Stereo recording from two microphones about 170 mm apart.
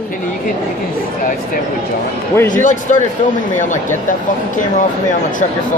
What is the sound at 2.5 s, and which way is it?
Speech, 50° left (ahead or behind).